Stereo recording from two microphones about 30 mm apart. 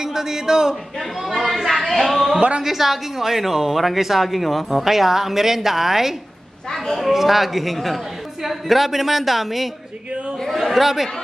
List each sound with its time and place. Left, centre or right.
0.0 s speech: centre
1.5 s a woman's voice: centre
6.7 s a woman's voice: centre
7.1 s a woman's voice: centre